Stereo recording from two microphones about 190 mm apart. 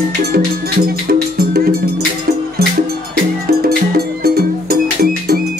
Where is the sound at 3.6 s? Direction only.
55° right (ahead or behind).